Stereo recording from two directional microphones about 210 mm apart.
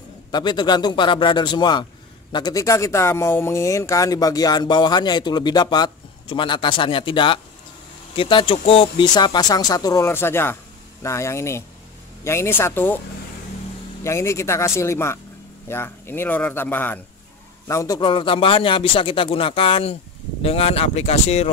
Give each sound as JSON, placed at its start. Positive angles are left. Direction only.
{"t": 0.3, "sound": "speech", "side_deg": 20}
{"t": 14.0, "sound": "speech", "side_deg": 15}